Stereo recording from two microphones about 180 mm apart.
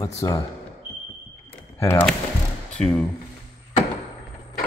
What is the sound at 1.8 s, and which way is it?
Speech, 10° left (ahead or behind).